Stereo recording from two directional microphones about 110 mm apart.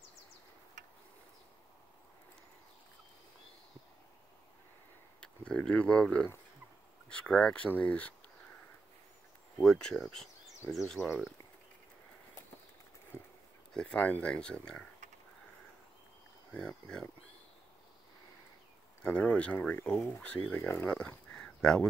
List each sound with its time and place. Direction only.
5.2 s speech: 10° left (ahead or behind)
9.6 s speech: 5° left (ahead or behind)
13.1 s dog: 20° right (ahead or behind)
13.7 s speech: 10° left (ahead or behind)
16.5 s speech: 5° left (ahead or behind)
19.0 s speech: 10° left (ahead or behind)